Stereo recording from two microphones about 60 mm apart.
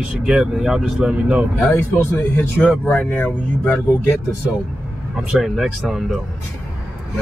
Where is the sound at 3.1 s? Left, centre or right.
Left.